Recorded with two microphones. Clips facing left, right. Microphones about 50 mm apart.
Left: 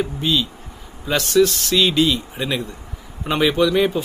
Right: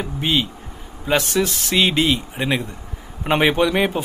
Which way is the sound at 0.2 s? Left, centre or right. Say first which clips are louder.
Even; right.